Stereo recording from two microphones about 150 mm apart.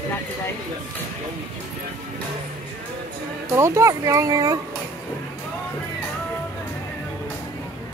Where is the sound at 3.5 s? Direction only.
20° right (ahead or behind).